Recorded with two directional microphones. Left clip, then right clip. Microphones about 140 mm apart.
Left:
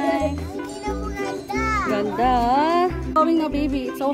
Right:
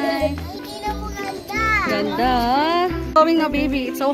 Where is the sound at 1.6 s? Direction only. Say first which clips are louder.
Right 5 dB; 40° right (ahead or behind).